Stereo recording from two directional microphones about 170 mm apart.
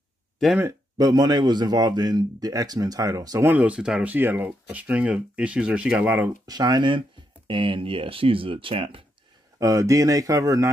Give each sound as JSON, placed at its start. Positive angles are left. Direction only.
{"t": 0.6, "sound": "a man's voice", "side_deg": -20}
{"t": 9.6, "sound": "a man's voice", "side_deg": -20}